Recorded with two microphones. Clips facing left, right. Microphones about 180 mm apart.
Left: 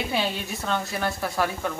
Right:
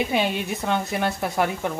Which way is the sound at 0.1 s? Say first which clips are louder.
Right 4 dB; 20° right (ahead or behind).